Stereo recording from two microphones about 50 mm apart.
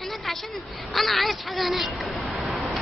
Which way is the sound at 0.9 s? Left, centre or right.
Centre.